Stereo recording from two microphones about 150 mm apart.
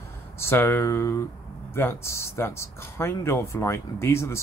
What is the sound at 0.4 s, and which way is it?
Speech, 15° left (ahead or behind).